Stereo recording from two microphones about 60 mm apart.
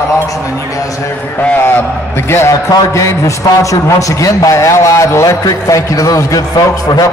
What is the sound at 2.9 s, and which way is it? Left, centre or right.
A man's voice, left.